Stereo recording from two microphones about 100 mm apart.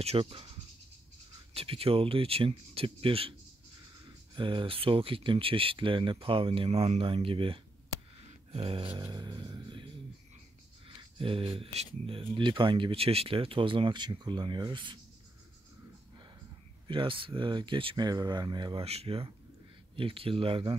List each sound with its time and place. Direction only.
0.0 s speech: 75° right (ahead or behind)
4.0 s speech: 55° right (ahead or behind)
9.1 s speech: 45° right (ahead or behind)
11.1 s speech: 65° right (ahead or behind)
12.4 s speech: 55° right (ahead or behind)
16.8 s speech: 60° right (ahead or behind)
18.0 s speech: 45° right (ahead or behind)
18.8 s speech: 80° right; by 20.7 s 65° right (ahead or behind)